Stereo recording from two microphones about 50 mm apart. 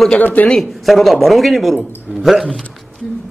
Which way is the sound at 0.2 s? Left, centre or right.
Left.